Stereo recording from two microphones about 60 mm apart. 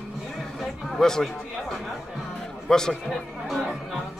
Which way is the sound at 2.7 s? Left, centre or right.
Centre.